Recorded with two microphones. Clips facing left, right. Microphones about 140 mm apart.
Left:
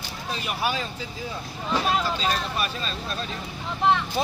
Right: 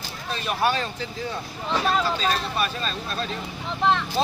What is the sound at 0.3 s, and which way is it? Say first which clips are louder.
Speech: right 4 dB; 10° left (ahead or behind).